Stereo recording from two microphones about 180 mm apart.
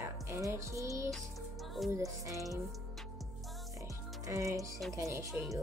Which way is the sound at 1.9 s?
20° right (ahead or behind).